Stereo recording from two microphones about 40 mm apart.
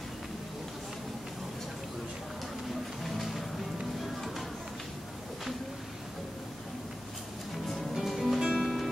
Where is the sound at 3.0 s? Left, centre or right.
Centre.